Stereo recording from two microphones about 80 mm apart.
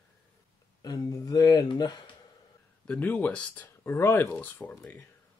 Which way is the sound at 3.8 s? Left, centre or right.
Left.